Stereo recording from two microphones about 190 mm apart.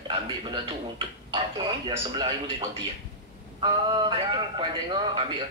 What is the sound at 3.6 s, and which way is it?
Speech, 25° right (ahead or behind).